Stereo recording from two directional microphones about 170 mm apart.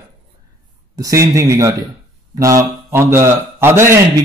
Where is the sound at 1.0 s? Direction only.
20° right (ahead or behind).